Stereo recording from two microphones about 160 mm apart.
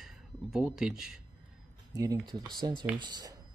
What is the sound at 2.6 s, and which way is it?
Speech, 30° right (ahead or behind).